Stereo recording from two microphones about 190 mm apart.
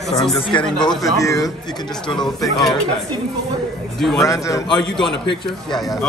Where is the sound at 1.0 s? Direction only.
15° left (ahead or behind).